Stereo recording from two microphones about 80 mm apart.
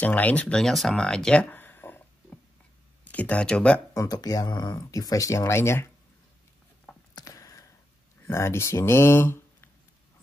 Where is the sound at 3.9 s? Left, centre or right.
Left.